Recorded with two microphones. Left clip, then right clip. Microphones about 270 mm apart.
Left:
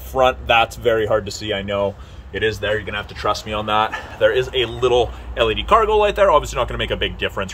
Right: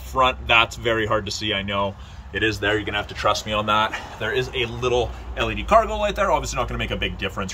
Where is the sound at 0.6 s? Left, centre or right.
Left.